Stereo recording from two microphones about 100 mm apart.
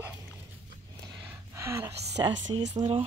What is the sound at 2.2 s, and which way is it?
Speech, 45° right (ahead or behind).